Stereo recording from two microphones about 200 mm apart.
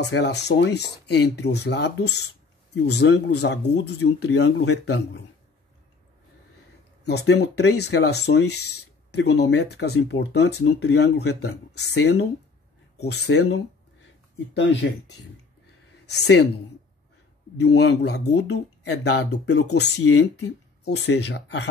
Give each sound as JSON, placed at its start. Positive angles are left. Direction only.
{"t": 0.1, "sound": "speech", "side_deg": 60}
{"t": 7.1, "sound": "speech", "side_deg": 55}
{"t": 17.6, "sound": "speech", "side_deg": 60}